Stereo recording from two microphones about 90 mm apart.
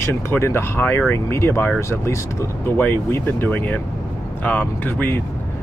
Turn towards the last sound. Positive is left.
turn(degrees=20)  # may be behind; listen again after turning